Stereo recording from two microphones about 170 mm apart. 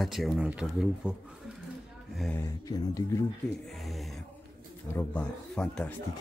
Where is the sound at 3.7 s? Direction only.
Centre (ahead or behind).